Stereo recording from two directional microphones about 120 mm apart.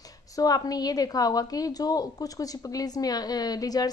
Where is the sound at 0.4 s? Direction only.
30° left (ahead or behind).